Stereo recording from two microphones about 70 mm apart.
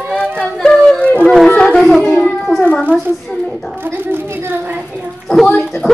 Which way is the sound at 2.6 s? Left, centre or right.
Centre.